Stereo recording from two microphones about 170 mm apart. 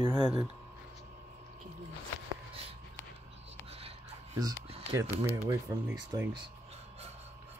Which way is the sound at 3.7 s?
35° right (ahead or behind).